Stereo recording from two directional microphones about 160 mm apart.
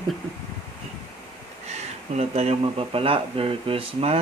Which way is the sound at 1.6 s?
45° right (ahead or behind).